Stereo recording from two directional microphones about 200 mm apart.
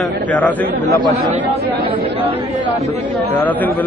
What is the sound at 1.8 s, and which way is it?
Speech, 30° right (ahead or behind).